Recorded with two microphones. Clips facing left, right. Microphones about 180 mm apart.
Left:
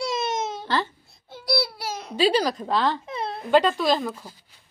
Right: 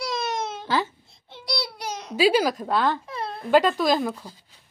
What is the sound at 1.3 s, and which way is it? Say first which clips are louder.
Babbling: left 5 dB; 5° left (ahead or behind).